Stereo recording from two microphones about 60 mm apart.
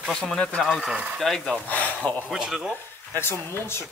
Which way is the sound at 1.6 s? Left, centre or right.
Left.